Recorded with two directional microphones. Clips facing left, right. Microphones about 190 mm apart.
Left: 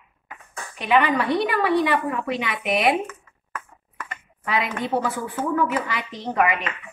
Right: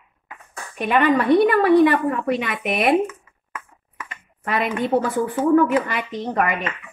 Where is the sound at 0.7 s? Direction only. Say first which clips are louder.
Right 2 dB; 50° right (ahead or behind).